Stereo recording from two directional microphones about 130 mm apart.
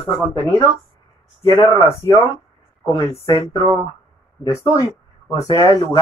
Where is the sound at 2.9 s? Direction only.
25° left (ahead or behind).